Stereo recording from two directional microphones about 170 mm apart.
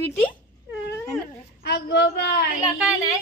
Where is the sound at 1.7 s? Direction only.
70° left (ahead or behind).